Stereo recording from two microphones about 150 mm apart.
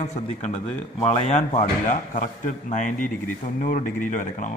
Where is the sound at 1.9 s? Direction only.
55° left (ahead or behind).